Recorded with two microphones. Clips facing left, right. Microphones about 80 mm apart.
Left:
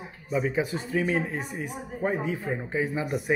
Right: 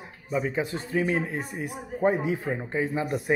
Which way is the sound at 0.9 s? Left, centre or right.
Centre.